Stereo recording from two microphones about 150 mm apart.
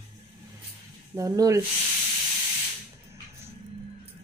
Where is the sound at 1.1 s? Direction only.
20° right (ahead or behind).